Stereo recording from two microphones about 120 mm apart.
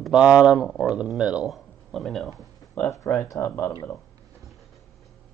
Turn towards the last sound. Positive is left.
turn(degrees=20)  # may be behind; listen again after turning